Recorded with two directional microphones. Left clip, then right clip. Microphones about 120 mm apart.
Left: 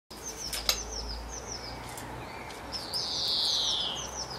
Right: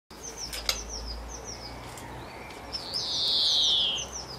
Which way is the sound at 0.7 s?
Centre (ahead or behind).